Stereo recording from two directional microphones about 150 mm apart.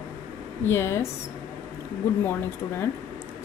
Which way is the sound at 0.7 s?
15° left (ahead or behind).